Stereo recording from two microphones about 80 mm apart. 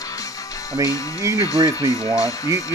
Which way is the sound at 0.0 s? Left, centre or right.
Left.